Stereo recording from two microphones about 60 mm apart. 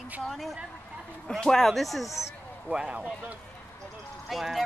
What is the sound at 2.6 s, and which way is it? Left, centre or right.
Speech, centre.